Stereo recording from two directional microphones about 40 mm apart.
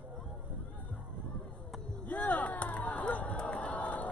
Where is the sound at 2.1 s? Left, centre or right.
Left.